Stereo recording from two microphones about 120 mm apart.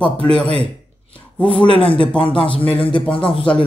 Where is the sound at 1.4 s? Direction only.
45° left (ahead or behind).